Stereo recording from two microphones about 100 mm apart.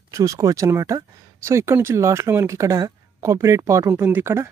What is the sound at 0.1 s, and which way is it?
Speech, 35° right (ahead or behind).